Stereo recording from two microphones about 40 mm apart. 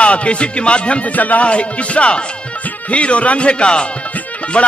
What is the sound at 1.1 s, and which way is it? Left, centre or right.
Speech, left.